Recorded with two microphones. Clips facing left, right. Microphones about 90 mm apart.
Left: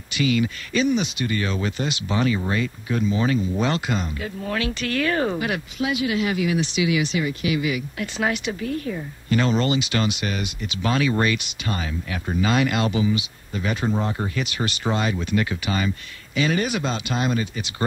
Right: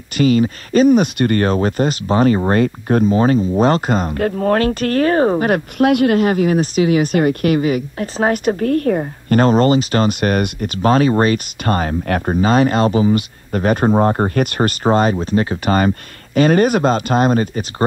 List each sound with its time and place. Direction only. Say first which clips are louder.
0.2 s speech: right 8 dB; 40° right (ahead or behind)
12.4 s speech: right 6 dB; 40° right (ahead or behind)